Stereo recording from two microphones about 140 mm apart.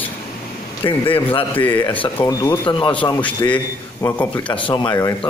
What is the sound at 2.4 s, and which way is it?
Speech, 30° left (ahead or behind).